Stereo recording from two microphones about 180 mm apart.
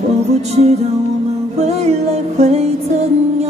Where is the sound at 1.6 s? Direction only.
40° right (ahead or behind).